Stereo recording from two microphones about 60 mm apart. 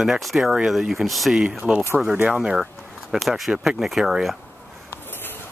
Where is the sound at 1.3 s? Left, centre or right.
Centre.